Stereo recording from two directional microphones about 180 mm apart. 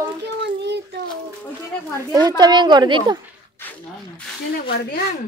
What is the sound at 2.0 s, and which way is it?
Speech, 20° right (ahead or behind).